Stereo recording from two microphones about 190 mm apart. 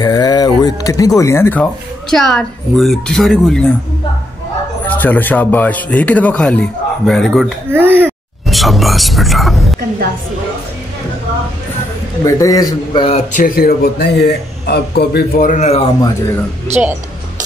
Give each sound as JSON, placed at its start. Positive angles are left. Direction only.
{"t": 0.0, "sound": "speech", "side_deg": 20}
{"t": 4.8, "sound": "a man's voice", "side_deg": 10}
{"t": 7.7, "sound": "speech", "side_deg": -10}
{"t": 8.5, "sound": "speech", "side_deg": 0}
{"t": 12.3, "sound": "a man's voice", "side_deg": 15}
{"t": 13.3, "sound": "a man's voice", "side_deg": 50}